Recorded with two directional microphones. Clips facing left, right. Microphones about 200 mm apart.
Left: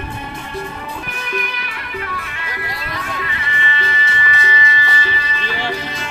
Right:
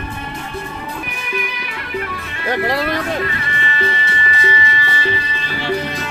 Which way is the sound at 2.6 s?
75° right (ahead or behind).